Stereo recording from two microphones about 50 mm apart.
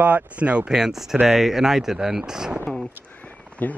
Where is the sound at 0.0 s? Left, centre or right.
Right.